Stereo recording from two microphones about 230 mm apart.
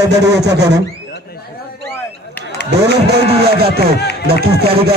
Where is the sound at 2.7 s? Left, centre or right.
Right.